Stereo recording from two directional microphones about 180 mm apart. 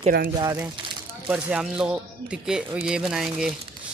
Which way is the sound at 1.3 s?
5° right (ahead or behind).